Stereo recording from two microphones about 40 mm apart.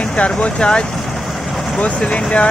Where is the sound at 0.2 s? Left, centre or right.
Left.